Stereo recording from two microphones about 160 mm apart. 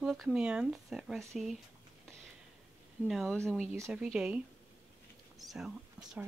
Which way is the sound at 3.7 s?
20° right (ahead or behind).